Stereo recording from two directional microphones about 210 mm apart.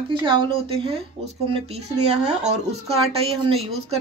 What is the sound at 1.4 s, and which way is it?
Speech, 25° right (ahead or behind).